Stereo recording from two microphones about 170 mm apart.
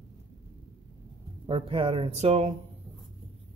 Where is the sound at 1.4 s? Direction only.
30° right (ahead or behind).